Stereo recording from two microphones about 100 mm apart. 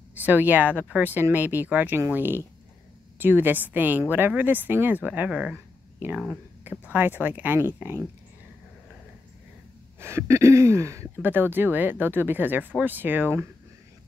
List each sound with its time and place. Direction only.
0.1 s speech: 20° right (ahead or behind)
6.1 s speech: 5° right (ahead or behind)
6.6 s speech: 15° right (ahead or behind)
9.9 s speech: 25° right (ahead or behind)